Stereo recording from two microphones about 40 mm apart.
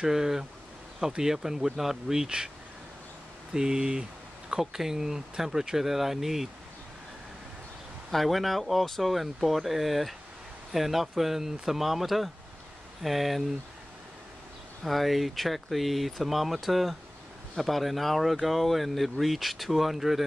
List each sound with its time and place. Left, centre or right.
0.0 s speech: centre
3.5 s speech: centre
8.1 s speech: centre
14.8 s speech: centre